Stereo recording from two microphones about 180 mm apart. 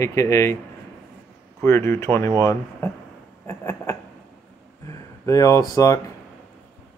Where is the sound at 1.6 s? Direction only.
15° left (ahead or behind).